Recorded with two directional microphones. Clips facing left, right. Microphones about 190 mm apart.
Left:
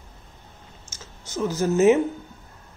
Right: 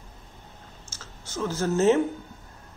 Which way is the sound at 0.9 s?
15° left (ahead or behind).